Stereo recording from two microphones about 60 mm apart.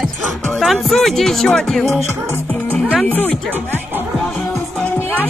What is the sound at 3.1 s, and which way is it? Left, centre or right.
Speech, left.